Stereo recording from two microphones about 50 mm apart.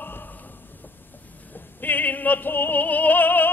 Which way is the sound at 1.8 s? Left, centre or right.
Left.